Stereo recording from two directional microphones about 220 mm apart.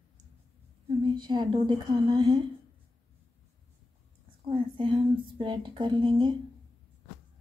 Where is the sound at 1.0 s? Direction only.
20° right (ahead or behind).